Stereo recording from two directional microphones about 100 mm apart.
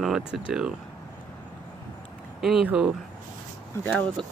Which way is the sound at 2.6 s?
10° right (ahead or behind).